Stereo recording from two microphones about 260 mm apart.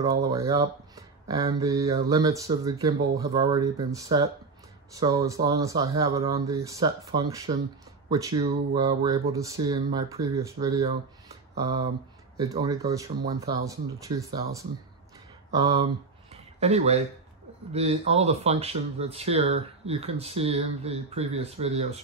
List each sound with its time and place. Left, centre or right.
0.0 s speech: centre
16.5 s speech: right